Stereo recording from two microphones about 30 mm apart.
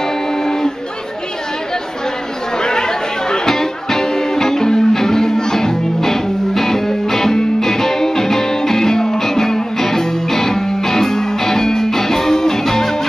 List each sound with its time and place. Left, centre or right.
2.6 s music: left